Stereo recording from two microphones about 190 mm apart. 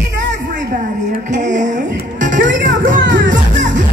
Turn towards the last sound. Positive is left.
turn(degrees=-70)  # may be behind; listen again after turning